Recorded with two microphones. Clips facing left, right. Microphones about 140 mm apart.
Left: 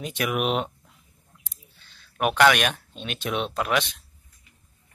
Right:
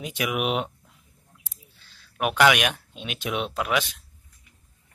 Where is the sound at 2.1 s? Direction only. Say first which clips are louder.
Left 1 dB; 5° right (ahead or behind).